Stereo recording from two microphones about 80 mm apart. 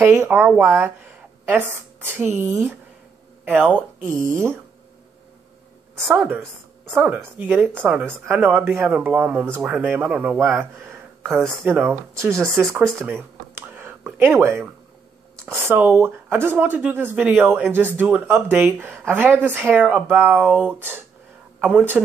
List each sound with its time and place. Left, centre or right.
0.0 s speech: right
0.6 s a sound: right
1.5 s speech: right
6.0 s speech: right
10.3 s speech: right
12.4 s speech: centre
13.0 s a sound: right
15.6 s a man's voice: right